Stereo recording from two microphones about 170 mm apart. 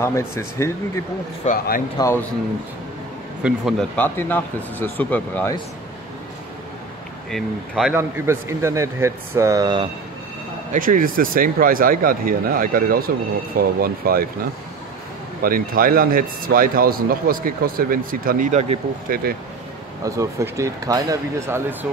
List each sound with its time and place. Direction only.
0.0 s speech: 15° left (ahead or behind)
1.4 s speech: 50° left (ahead or behind)
2.0 s speech: 15° left (ahead or behind)
3.4 s speech: centre (ahead or behind)
3.9 s speech: 10° left (ahead or behind)
7.2 s speech: centre (ahead or behind)
7.9 s speech: 15° right (ahead or behind)
10.7 s a man's voice: 55° right (ahead or behind)
15.4 s a man's voice: 55° right (ahead or behind)
20.1 s speech: 20° right (ahead or behind)